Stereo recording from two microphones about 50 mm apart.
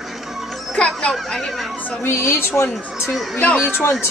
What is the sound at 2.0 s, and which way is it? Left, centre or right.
A woman's voice, left.